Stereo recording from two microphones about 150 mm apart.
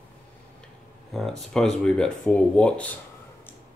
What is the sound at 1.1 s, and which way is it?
Speech, centre (ahead or behind).